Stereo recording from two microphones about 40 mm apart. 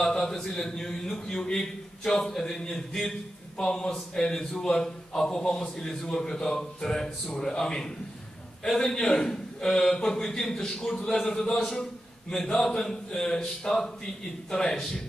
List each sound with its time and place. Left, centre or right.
0.0 s a man's voice: centre